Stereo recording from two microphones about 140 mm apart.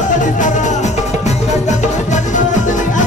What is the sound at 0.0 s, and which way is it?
Music, 65° left (ahead or behind).